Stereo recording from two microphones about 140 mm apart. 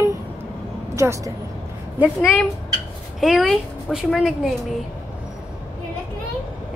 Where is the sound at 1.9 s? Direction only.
10° right (ahead or behind).